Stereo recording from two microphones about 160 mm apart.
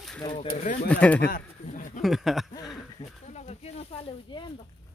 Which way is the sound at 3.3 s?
40° left (ahead or behind).